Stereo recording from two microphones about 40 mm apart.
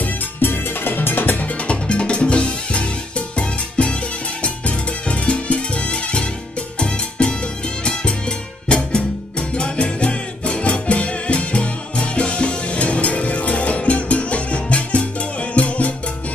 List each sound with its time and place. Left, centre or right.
0.0 s music: left
1.4 s music: left